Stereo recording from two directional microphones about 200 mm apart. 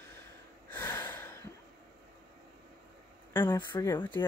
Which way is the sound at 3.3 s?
15° left (ahead or behind).